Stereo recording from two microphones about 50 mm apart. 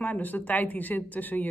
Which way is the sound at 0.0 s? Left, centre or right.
Left.